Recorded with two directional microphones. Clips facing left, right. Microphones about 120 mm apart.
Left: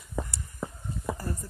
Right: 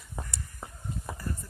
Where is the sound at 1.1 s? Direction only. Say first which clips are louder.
Left 2 dB; 40° left (ahead or behind).